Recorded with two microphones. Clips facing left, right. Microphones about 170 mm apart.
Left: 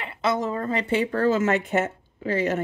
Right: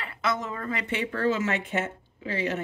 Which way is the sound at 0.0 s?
25° left (ahead or behind).